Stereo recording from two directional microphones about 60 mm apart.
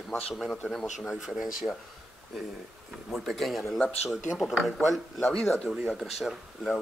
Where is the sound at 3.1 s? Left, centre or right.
Centre.